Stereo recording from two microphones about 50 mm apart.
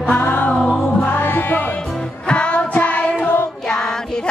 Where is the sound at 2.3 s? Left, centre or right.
Left.